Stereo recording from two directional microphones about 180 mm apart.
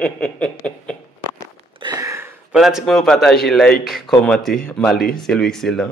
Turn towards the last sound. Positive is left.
turn(degrees=0)  # may be behind; listen again after turning